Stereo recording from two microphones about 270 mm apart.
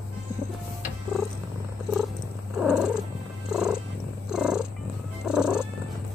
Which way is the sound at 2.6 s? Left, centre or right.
Centre.